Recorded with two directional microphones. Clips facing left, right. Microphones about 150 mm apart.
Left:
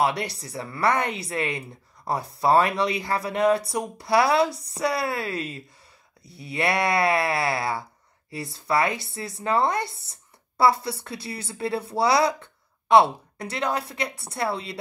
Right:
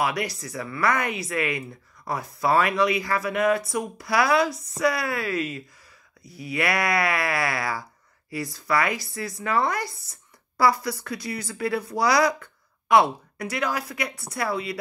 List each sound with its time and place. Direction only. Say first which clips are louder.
0.0 s speech: left 2 dB; 30° left (ahead or behind)